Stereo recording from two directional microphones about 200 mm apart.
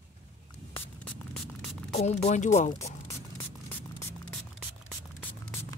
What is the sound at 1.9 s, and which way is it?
Speech, 35° left (ahead or behind).